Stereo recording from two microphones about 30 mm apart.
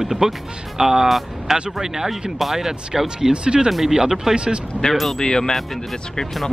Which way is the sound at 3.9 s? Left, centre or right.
Centre.